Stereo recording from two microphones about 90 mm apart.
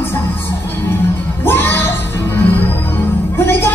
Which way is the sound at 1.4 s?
25° left (ahead or behind).